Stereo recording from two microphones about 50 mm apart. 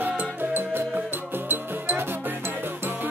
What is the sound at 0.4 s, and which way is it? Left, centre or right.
Music, right.